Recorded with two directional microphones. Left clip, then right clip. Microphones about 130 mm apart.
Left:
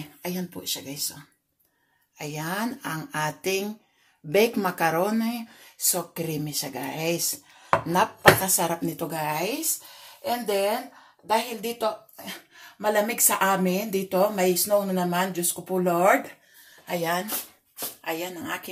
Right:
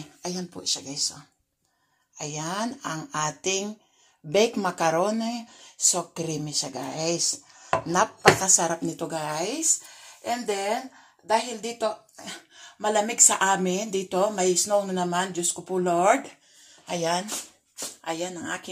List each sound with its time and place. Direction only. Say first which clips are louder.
0.0 s speech: even; centre (ahead or behind)
7.8 s chopping: left 1 dB; 5° right (ahead or behind)
8.5 s speech: right 1 dB; 15° right (ahead or behind); by 12.4 s 30° right (ahead or behind)
12.8 s speech: right 1 dB; 20° right (ahead or behind)